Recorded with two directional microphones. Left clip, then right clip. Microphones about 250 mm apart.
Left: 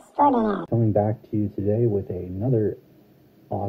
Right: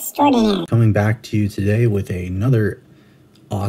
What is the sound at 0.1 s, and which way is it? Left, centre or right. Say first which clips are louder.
Speech: right 4 dB; right.